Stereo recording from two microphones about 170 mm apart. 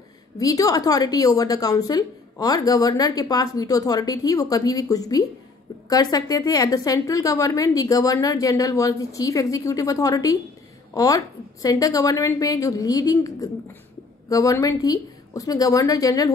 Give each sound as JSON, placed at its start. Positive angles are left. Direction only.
{"t": 0.4, "sound": "a woman's voice", "side_deg": 20}